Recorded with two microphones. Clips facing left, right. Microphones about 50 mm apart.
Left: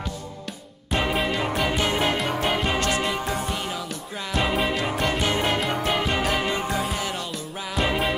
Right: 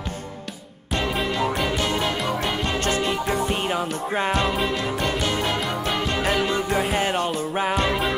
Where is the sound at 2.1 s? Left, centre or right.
Centre.